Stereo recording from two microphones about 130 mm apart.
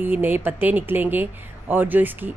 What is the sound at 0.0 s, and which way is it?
Speech, 15° right (ahead or behind).